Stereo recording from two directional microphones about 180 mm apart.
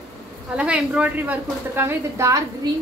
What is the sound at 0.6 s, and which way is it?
A woman's voice, 5° right (ahead or behind).